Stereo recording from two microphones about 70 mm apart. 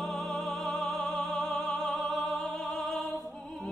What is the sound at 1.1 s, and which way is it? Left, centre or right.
Opera, centre.